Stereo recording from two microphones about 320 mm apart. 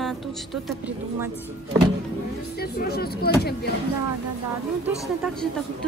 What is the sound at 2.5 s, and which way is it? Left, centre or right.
Speech, left.